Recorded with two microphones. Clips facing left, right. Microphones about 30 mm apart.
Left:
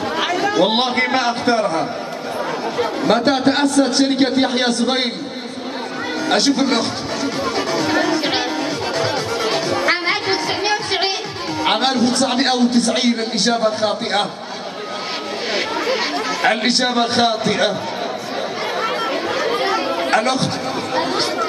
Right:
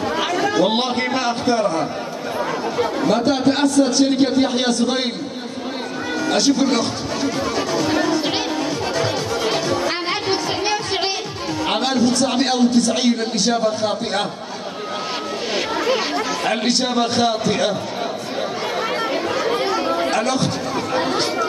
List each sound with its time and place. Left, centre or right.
0.1 s chatter: centre
0.7 s a man's voice: left
3.0 s a man's voice: left
6.2 s a man's voice: left
7.4 s music: left
8.9 s music: left
9.8 s music: left
12.0 s a man's voice: left
15.6 s chatter: centre
16.4 s a man's voice: left
18.8 s chatter: centre
20.1 s speech: left
20.9 s speech: centre